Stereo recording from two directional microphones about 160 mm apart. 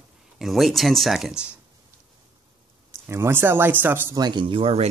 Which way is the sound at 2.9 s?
15° right (ahead or behind).